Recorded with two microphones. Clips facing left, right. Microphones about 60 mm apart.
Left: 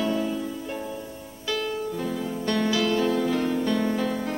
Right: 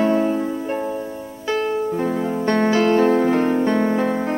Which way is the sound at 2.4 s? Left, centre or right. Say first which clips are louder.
Right 7 dB; right.